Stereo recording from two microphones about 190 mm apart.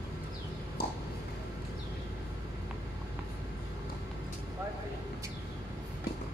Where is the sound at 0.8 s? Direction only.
55° left (ahead or behind).